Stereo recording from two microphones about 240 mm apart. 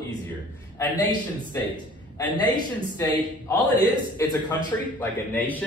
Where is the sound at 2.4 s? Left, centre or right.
Centre.